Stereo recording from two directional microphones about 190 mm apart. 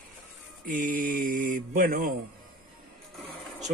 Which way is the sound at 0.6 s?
45° right (ahead or behind).